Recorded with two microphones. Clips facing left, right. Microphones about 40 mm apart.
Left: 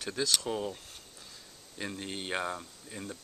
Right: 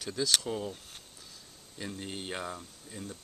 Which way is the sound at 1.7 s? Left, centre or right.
Left.